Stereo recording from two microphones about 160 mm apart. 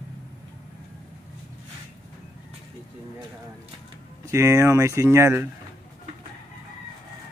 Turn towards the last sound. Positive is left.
turn(degrees=-15)  # may be behind; listen again after turning